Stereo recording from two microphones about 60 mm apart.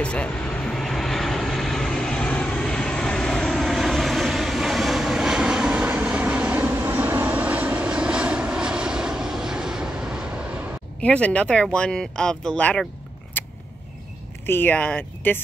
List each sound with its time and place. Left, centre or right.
0.0 s vehicle: centre
2.0 s vehicle: centre
11.0 s speech: centre
13.4 s a sound: left
14.4 s speech: left